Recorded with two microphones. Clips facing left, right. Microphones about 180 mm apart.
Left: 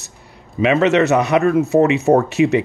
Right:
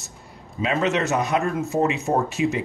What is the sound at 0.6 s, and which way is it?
Speech, 75° left (ahead or behind).